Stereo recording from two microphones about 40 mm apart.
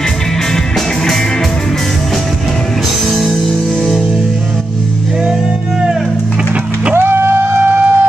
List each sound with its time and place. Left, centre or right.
7.0 s music: right